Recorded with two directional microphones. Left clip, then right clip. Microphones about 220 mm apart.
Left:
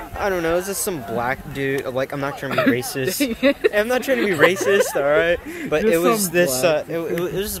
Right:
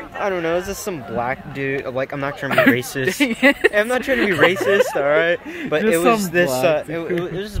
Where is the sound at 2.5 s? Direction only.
45° right (ahead or behind).